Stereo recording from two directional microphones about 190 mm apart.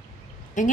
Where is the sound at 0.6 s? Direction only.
40° left (ahead or behind).